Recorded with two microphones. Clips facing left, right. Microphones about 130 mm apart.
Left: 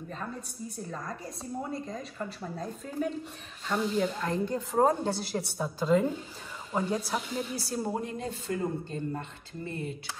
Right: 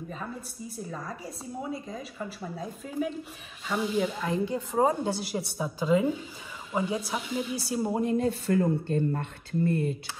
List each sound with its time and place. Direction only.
0.1 s a woman's voice: 5° right (ahead or behind)
8.5 s speech: 60° right (ahead or behind)